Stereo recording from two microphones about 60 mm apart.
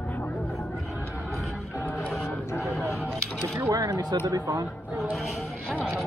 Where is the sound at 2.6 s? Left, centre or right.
Centre.